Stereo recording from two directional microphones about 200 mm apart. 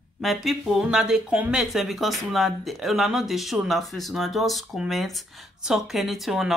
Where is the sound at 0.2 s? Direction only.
Centre (ahead or behind).